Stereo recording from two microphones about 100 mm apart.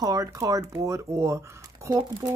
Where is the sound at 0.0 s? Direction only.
35° right (ahead or behind).